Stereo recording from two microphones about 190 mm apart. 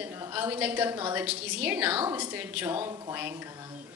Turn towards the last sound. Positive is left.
turn(degrees=-15)  # may be behind; listen again after turning